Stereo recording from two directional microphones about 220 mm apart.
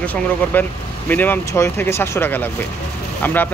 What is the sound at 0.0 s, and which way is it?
Speech, 5° left (ahead or behind).